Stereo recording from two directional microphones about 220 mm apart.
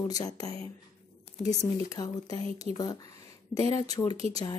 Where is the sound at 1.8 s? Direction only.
15° left (ahead or behind).